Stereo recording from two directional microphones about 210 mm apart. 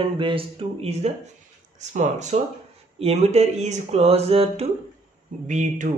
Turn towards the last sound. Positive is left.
turn(degrees=-35)  # may be behind; listen again after turning